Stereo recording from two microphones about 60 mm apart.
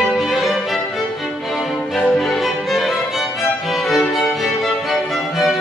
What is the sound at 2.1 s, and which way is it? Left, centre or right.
Music, centre.